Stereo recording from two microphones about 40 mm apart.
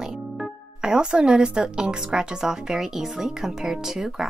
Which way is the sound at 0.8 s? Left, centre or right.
Centre.